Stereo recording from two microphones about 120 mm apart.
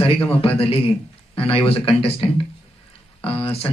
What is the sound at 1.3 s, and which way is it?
Speech, 50° left (ahead or behind).